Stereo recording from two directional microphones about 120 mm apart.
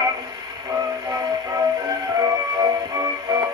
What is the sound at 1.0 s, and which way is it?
Music, 30° right (ahead or behind).